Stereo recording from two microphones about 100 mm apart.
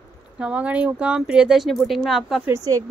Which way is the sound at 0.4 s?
10° right (ahead or behind).